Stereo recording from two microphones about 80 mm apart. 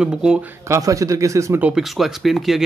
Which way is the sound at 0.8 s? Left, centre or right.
Right.